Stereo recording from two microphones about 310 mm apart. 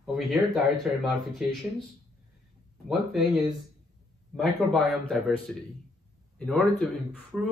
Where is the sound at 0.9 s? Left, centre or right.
Centre.